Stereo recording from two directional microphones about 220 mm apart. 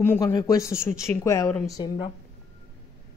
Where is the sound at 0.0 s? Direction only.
10° left (ahead or behind).